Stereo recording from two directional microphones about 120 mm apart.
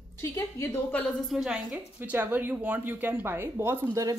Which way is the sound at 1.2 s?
5° right (ahead or behind).